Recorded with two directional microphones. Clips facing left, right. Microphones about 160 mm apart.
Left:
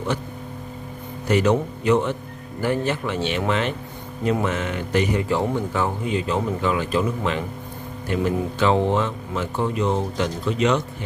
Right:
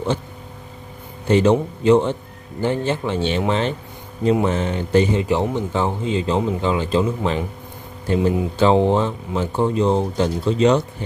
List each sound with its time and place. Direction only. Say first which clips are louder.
1.2 s speech: right 4 dB; 30° right (ahead or behind)
5.2 s speech: right 2 dB; 20° right (ahead or behind)